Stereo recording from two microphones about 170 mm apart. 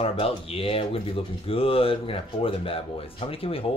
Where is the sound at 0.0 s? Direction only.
35° left (ahead or behind).